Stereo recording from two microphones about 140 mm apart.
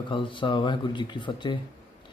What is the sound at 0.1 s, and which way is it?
Speech, 35° left (ahead or behind).